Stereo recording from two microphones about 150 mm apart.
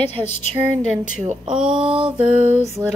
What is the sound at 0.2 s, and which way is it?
Speech, 25° right (ahead or behind).